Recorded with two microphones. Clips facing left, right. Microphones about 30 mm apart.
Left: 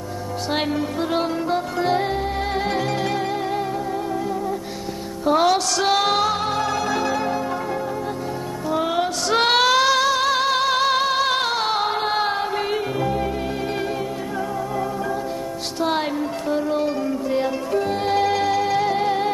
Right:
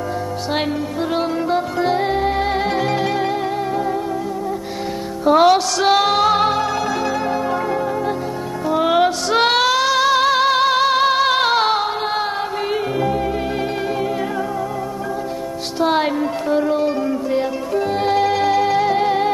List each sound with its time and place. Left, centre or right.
1.1 s music: centre
2.1 s music: centre
5.2 s music: centre
8.6 s music: centre
9.3 s female singing: centre
9.9 s music: centre
11.7 s music: centre
15.8 s music: centre